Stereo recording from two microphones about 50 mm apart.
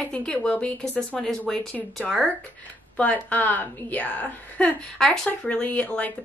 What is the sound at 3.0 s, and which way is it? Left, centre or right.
A woman's voice, left.